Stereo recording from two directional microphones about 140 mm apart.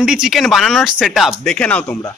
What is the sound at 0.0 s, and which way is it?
Speech, 5° right (ahead or behind).